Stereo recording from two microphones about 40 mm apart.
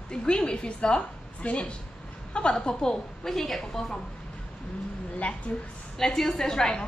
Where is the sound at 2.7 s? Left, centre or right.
Centre.